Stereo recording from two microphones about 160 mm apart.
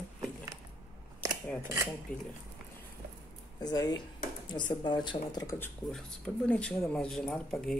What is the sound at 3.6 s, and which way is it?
Speech, 25° left (ahead or behind).